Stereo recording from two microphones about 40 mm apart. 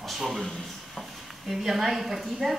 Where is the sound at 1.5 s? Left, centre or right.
Centre.